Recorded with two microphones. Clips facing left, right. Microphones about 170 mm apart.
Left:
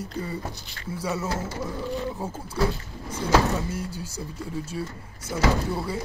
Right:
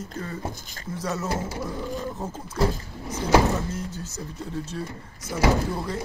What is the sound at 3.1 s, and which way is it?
Speech, 10° right (ahead or behind).